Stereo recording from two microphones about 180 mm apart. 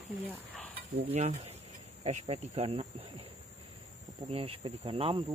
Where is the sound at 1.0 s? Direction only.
35° right (ahead or behind).